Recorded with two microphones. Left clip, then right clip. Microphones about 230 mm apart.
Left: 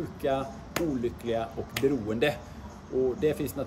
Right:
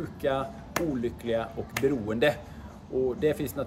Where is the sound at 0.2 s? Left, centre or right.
Centre.